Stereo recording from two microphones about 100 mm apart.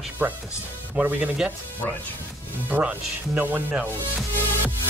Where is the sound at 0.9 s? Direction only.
15° right (ahead or behind).